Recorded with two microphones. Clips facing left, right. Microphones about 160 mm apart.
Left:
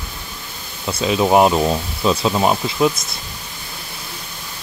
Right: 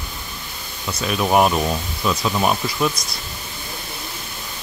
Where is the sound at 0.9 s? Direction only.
25° left (ahead or behind).